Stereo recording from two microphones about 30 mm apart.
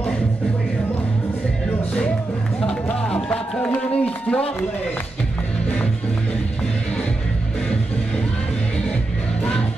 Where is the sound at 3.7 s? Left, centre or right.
Left.